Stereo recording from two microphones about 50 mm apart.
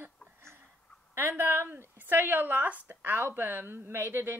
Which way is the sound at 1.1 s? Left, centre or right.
Right.